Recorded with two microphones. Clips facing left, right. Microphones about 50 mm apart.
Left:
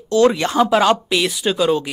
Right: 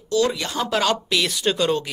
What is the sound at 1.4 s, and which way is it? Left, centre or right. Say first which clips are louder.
Speech: left 4 dB; centre.